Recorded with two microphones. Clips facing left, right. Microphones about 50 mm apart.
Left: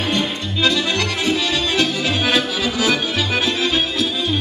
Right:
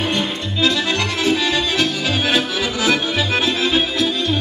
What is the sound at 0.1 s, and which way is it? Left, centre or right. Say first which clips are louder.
Accordion: even; centre.